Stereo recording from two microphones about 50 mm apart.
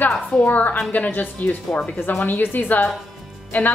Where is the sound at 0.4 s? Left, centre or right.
Left.